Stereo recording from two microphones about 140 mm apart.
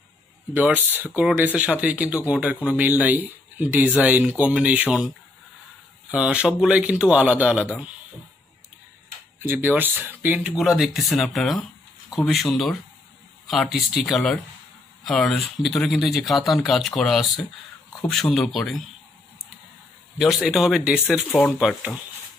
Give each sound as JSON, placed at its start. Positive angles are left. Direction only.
{"t": 0.6, "sound": "speech", "side_deg": -15}
{"t": 6.1, "sound": "speech", "side_deg": -10}
{"t": 9.4, "sound": "speech", "side_deg": -15}
{"t": 20.2, "sound": "speech", "side_deg": 0}